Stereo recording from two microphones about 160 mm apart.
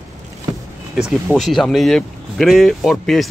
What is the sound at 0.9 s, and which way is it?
Speech, centre (ahead or behind).